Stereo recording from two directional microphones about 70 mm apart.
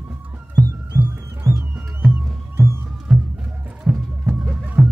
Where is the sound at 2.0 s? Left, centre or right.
Centre.